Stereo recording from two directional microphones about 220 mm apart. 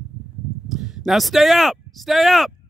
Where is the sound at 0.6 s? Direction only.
Centre (ahead or behind).